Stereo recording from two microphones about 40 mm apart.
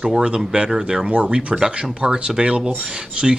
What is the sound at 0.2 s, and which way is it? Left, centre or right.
Speech, right.